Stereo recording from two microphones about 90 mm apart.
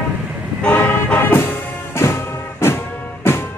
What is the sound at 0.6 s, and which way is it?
Vehicle, 20° left (ahead or behind).